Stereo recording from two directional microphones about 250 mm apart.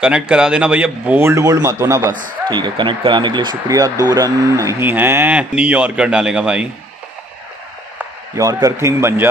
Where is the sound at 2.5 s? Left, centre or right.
Centre.